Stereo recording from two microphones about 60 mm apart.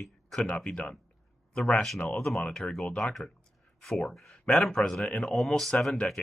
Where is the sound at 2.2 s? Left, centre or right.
Centre.